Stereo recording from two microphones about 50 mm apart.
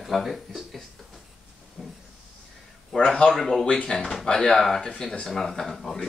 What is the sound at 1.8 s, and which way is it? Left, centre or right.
Speech, centre.